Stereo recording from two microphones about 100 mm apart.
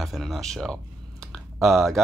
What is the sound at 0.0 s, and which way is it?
Speech, centre (ahead or behind).